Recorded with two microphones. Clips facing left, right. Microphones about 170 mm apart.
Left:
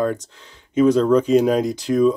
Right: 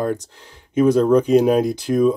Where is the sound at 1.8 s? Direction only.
5° right (ahead or behind).